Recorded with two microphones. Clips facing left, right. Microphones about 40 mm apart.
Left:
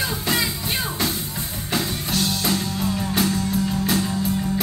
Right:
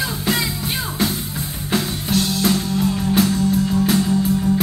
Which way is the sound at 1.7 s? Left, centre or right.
Centre.